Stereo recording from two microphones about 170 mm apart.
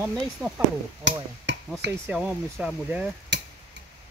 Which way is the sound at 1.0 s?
90° right.